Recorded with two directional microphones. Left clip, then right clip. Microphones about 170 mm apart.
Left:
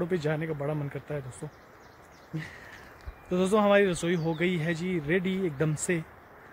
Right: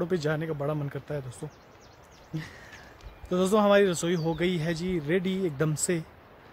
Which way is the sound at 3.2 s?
25° right (ahead or behind).